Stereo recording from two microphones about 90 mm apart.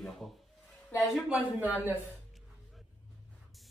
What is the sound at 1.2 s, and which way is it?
Speech, 15° right (ahead or behind).